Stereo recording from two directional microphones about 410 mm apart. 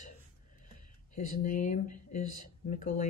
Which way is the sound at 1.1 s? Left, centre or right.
Centre.